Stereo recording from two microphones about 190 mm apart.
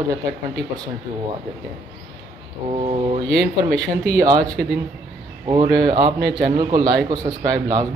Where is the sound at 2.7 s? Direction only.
30° right (ahead or behind).